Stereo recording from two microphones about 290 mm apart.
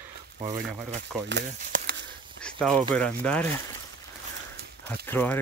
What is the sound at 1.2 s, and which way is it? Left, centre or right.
Speech, right.